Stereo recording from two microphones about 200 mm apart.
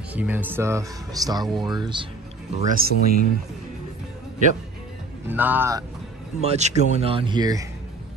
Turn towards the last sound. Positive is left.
turn(degrees=-20)  # may be behind; listen again after turning